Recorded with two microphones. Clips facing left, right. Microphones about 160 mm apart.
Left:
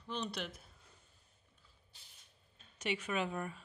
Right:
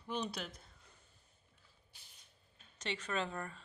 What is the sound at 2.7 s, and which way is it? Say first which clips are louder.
Speech: left 2 dB; 10° left (ahead or behind).